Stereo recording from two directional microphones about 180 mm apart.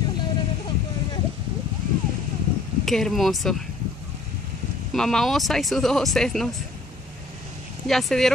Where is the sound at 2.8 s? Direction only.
Centre (ahead or behind).